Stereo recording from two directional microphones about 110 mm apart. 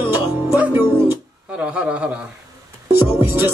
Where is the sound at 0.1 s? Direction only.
20° right (ahead or behind).